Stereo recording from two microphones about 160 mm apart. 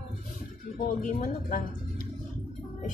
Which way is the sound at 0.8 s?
55° left (ahead or behind).